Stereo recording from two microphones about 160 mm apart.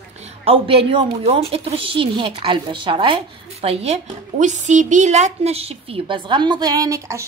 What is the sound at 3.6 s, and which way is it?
A woman's voice, 40° right (ahead or behind).